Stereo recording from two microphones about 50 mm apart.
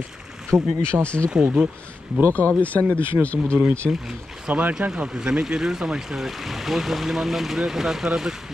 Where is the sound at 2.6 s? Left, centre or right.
Left.